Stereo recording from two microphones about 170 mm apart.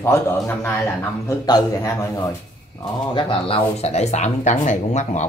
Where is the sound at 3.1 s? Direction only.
30° left (ahead or behind).